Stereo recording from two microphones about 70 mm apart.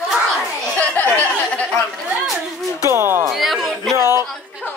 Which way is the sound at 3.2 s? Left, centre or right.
Centre.